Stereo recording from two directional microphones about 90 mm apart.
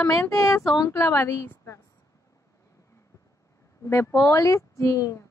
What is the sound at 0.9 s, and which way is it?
Speech, 35° left (ahead or behind).